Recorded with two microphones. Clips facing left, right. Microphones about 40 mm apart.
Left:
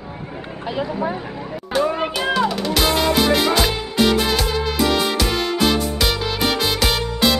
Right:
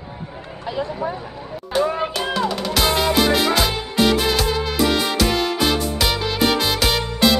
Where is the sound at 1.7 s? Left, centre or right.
Centre.